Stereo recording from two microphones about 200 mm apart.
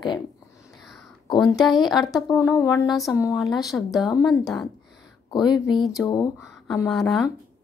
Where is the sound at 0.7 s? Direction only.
Centre (ahead or behind).